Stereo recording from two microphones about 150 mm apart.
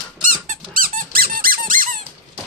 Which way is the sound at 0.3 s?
60° right (ahead or behind).